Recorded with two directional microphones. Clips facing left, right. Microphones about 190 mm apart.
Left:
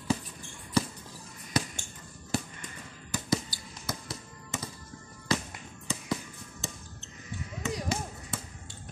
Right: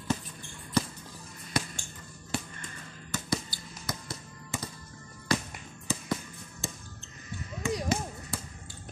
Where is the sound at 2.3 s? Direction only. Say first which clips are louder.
Left 3 dB; 40° left (ahead or behind).